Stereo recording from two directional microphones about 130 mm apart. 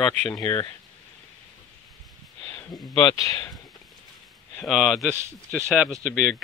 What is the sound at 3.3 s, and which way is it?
Speech, 30° left (ahead or behind).